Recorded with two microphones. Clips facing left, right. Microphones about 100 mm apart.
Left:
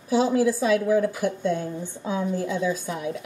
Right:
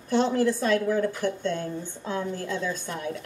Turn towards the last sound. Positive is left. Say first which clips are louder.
# left 3 dB
turn(degrees=5)  # may be behind; listen again after turning